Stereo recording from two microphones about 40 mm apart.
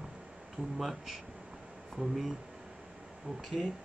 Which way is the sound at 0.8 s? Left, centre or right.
Centre.